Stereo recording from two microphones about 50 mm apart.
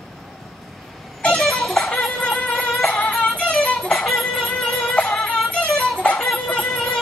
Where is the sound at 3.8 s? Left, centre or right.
Centre.